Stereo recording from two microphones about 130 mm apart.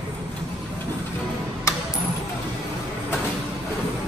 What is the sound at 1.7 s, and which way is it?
Music, 25° left (ahead or behind).